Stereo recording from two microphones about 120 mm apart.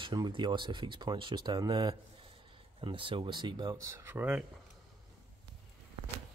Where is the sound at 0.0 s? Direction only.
40° right (ahead or behind); by 4.5 s 15° right (ahead or behind).